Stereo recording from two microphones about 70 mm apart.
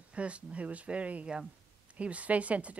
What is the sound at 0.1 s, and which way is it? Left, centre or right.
Speech, centre.